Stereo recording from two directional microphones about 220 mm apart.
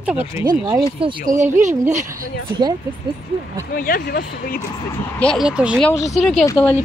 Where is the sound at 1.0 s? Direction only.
25° right (ahead or behind).